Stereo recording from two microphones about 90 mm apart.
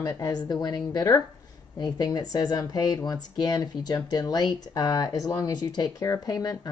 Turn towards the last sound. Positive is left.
turn(degrees=45)  # may be behind; listen again after turning